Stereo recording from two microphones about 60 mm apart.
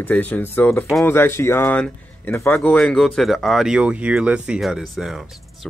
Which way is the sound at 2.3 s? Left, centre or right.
Left.